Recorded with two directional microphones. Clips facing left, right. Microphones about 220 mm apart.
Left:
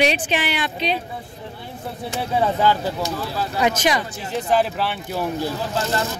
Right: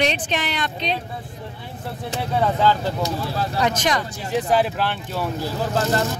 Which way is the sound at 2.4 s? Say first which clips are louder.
Even; 10° left (ahead or behind).